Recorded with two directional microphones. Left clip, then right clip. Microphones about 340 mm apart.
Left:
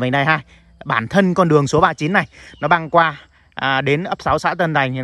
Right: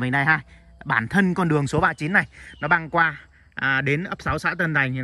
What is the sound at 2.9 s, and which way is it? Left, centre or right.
Speech, centre.